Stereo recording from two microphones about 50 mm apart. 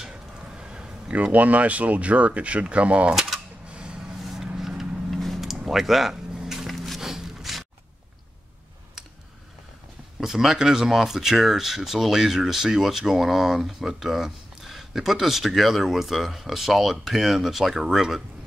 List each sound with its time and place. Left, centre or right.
0.6 s speech: centre
4.5 s vehicle: centre
5.1 s a sound: centre
7.0 s scrape: centre
10.2 s speech: centre